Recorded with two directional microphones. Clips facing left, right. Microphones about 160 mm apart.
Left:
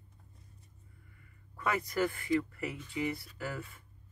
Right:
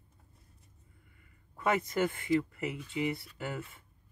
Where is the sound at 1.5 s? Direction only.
20° right (ahead or behind).